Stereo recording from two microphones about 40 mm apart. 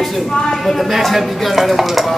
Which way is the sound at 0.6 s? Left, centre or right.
Centre.